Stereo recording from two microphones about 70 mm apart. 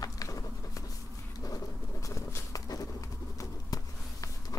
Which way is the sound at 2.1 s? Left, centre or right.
Left.